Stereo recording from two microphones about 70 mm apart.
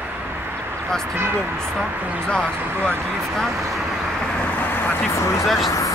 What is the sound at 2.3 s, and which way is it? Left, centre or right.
Speech, centre.